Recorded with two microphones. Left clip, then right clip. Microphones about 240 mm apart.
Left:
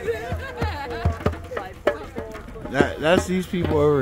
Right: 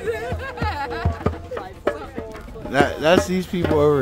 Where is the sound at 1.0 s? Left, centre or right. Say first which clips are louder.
Right 1 dB; left.